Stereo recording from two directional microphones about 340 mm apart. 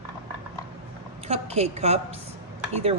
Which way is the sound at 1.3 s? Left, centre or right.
Centre.